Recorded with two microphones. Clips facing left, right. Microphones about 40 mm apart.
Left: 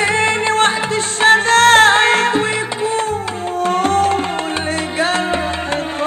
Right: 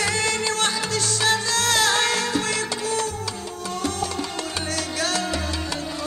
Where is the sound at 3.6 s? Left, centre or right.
Left.